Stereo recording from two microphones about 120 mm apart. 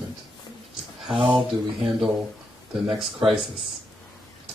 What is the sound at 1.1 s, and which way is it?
Speech, 45° right (ahead or behind).